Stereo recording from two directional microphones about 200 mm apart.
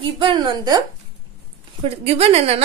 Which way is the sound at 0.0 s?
25° right (ahead or behind).